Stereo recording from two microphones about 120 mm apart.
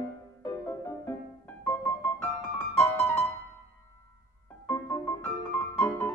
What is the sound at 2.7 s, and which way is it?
Music, 15° left (ahead or behind).